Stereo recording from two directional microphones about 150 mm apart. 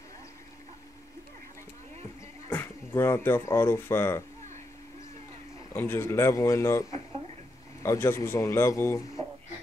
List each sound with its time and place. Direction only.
2.5 s speech: 15° left (ahead or behind)
5.7 s a man's voice: 15° left (ahead or behind)